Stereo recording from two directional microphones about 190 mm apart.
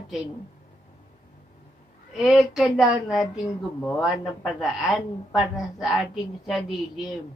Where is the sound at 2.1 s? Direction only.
Centre (ahead or behind).